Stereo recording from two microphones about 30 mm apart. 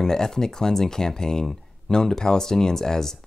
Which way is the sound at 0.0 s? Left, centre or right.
Centre.